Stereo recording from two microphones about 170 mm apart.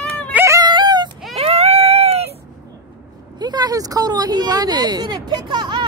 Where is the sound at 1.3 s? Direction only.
40° right (ahead or behind).